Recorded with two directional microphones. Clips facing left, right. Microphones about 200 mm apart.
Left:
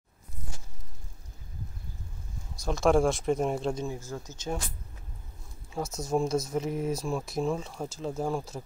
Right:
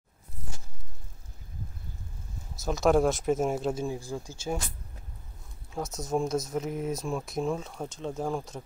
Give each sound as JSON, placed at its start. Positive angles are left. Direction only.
{"t": 2.5, "sound": "speech", "side_deg": 0}
{"t": 5.7, "sound": "speech", "side_deg": 0}